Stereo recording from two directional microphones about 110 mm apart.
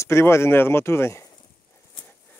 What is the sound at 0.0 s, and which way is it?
Speech, 25° left (ahead or behind).